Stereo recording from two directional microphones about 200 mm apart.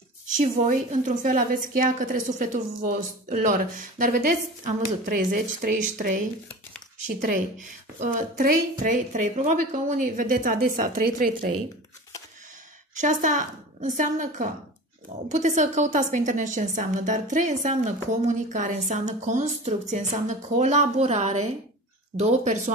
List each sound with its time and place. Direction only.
0.4 s a woman's voice: 40° right (ahead or behind)
12.9 s a woman's voice: 40° right (ahead or behind)